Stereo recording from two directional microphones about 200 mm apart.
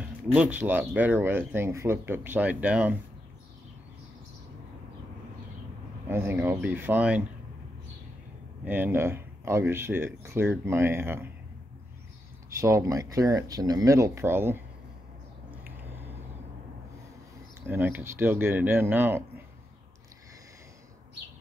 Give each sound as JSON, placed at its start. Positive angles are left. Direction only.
{"t": 0.3, "sound": "speech", "side_deg": -10}
{"t": 6.0, "sound": "speech", "side_deg": -10}
{"t": 8.6, "sound": "speech", "side_deg": -10}
{"t": 12.5, "sound": "speech", "side_deg": -15}
{"t": 15.5, "sound": "a sound", "side_deg": -10}
{"t": 17.6, "sound": "speech", "side_deg": -10}